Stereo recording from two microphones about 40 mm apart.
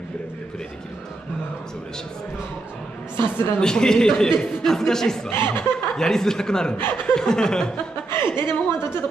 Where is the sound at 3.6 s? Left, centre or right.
Centre.